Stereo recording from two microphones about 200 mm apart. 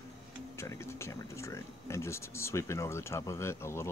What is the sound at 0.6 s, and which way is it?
Speech, 15° left (ahead or behind).